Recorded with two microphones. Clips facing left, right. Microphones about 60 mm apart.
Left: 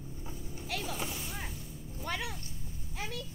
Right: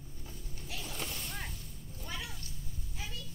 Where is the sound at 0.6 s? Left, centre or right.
Left.